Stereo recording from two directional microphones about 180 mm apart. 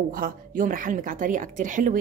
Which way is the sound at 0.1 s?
50° right (ahead or behind).